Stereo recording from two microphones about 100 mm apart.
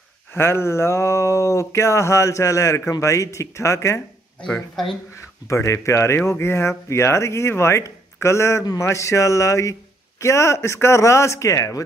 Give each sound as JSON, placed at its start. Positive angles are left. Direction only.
{"t": 0.3, "sound": "speech", "side_deg": 25}
{"t": 5.5, "sound": "a man's voice", "side_deg": 30}